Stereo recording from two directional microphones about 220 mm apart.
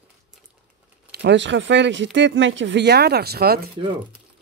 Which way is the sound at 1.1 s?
50° right (ahead or behind).